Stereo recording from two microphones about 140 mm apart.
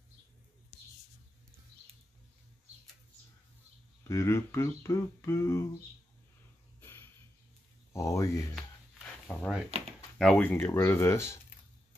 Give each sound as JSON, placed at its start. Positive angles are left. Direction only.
{"t": 4.1, "sound": "speech", "side_deg": 20}
{"t": 6.8, "sound": "a sound", "side_deg": 15}
{"t": 7.9, "sound": "speech", "side_deg": 20}
{"t": 9.3, "sound": "speech", "side_deg": 5}
{"t": 9.7, "sound": "a sound", "side_deg": -50}
{"t": 10.1, "sound": "speech", "side_deg": 5}